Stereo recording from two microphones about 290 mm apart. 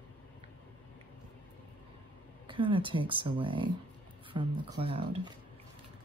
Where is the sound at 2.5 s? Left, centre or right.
Centre.